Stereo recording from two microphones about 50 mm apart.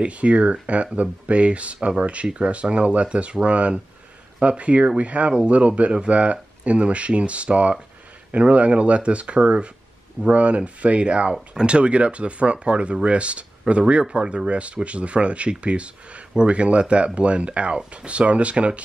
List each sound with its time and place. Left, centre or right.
0.0 s speech: right